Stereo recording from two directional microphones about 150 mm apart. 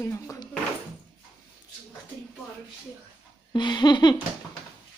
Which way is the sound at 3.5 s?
30° left (ahead or behind).